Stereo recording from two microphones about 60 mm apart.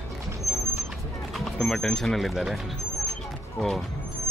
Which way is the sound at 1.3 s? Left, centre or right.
Centre.